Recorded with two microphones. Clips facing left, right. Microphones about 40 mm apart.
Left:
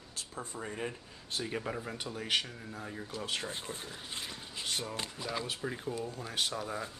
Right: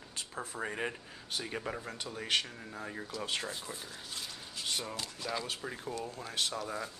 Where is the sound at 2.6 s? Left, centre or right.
Centre.